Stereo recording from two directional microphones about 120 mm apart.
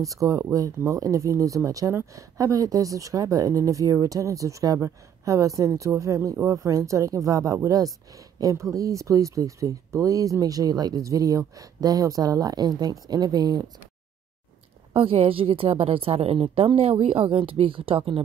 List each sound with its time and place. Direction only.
0.0 s speech: 30° right (ahead or behind)
15.0 s speech: 50° right (ahead or behind)